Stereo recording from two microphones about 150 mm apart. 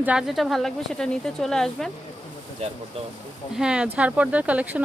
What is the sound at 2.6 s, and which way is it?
Speech, 45° right (ahead or behind).